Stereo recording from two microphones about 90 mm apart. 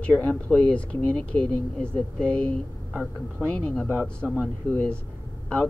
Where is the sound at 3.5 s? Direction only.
15° left (ahead or behind).